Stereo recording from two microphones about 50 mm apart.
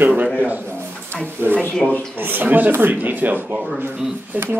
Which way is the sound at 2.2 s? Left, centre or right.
Right.